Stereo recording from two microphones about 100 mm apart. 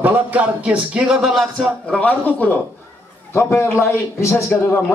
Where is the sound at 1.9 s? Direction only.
15° left (ahead or behind).